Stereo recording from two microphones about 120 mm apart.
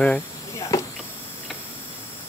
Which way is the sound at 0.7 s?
30° left (ahead or behind).